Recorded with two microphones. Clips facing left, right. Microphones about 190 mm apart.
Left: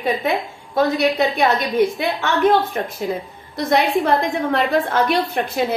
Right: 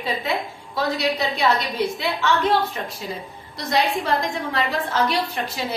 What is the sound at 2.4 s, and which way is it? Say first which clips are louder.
A woman's voice: left 5 dB; 55° left (ahead or behind).